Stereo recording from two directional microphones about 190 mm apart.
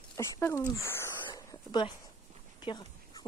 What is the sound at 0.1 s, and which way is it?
Speech, 15° left (ahead or behind).